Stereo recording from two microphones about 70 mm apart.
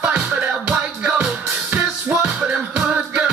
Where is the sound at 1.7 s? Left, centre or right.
Right.